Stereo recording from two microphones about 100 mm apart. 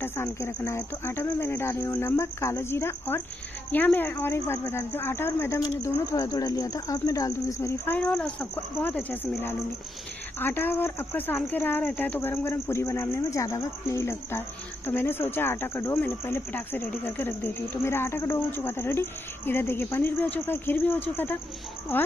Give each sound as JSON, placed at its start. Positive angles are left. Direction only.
{"t": 0.0, "sound": "speech", "side_deg": 25}
{"t": 8.5, "sound": "speech", "side_deg": 20}